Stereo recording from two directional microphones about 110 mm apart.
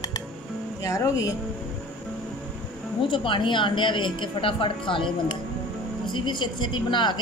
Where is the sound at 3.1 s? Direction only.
50° left (ahead or behind).